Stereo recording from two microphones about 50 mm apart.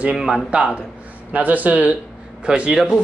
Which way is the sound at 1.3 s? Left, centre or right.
Right.